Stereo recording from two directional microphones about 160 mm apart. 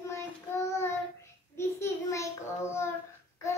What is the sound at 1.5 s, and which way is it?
A child's voice, 15° left (ahead or behind).